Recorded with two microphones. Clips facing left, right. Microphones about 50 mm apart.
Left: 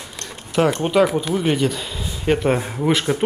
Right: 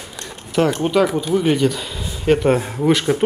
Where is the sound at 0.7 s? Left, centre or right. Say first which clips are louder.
Even; centre.